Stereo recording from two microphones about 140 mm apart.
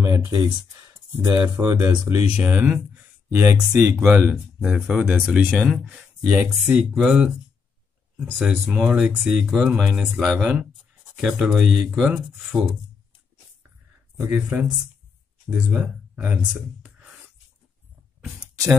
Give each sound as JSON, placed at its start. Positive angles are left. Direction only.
{"t": 0.3, "sound": "speech", "side_deg": -30}
{"t": 8.4, "sound": "speech", "side_deg": -5}
{"t": 14.1, "sound": "speech", "side_deg": -15}
{"t": 15.7, "sound": "speech", "side_deg": -15}
{"t": 16.4, "sound": "speech", "side_deg": -5}
{"t": 18.4, "sound": "a sound", "side_deg": -15}